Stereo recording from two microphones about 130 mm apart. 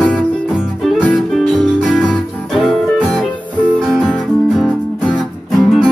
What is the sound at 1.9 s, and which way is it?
Music, 10° left (ahead or behind).